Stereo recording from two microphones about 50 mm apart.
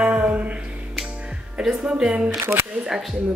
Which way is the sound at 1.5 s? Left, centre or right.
Centre.